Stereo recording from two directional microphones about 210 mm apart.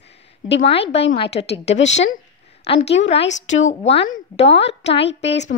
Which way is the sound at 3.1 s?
60° left (ahead or behind).